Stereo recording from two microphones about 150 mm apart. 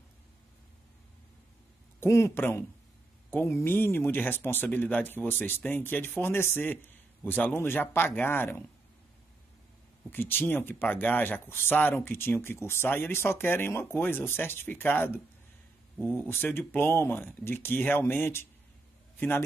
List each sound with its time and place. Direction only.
2.0 s speech: 20° left (ahead or behind)
10.1 s speech: 15° left (ahead or behind)
16.2 s a man's voice: 10° left (ahead or behind)